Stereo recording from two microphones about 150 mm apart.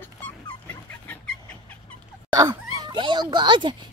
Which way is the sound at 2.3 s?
25° right (ahead or behind).